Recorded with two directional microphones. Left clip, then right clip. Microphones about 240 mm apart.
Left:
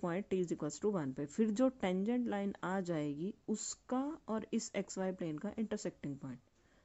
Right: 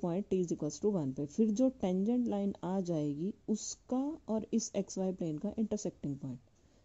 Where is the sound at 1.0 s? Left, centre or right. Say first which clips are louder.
Right 3 dB; centre.